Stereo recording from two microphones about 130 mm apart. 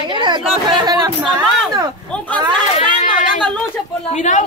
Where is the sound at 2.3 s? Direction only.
35° right (ahead or behind).